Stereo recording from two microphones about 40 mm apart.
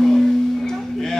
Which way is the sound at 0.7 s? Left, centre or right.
Centre.